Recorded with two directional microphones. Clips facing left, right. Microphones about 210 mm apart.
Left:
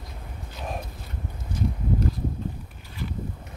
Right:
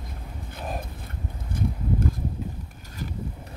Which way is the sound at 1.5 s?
50° right (ahead or behind).